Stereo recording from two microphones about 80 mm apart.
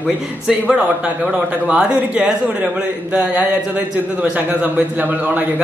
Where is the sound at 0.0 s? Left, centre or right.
Centre.